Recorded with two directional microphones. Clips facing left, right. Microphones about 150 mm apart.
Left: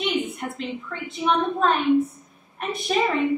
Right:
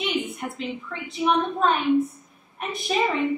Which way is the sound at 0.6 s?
Centre (ahead or behind).